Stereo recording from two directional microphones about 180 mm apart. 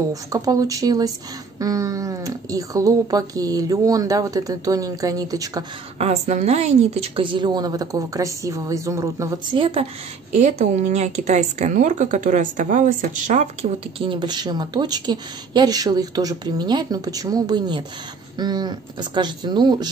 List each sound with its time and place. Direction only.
0.1 s a woman's voice: 20° right (ahead or behind)
5.9 s a woman's voice: 40° right (ahead or behind); by 9.6 s 15° right (ahead or behind)
9.6 s a woman's voice: 30° right (ahead or behind)
10.3 s a woman's voice: 40° right (ahead or behind); by 19.9 s 25° right (ahead or behind)